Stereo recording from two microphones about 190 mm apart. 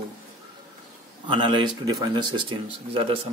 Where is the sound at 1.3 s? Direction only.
25° right (ahead or behind).